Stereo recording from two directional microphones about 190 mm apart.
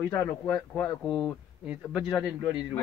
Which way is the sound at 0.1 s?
5° left (ahead or behind).